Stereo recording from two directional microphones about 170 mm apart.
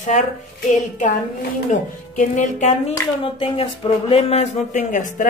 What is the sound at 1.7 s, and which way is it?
Speech, 50° left (ahead or behind).